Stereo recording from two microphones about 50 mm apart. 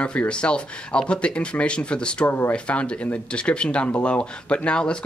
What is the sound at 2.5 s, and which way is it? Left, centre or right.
Speech, left.